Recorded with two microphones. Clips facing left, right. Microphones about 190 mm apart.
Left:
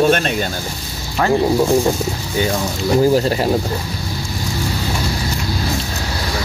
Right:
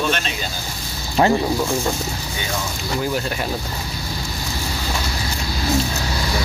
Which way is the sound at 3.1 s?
30° left (ahead or behind).